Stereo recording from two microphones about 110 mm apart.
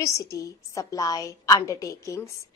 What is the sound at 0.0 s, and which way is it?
A woman's voice, 30° left (ahead or behind).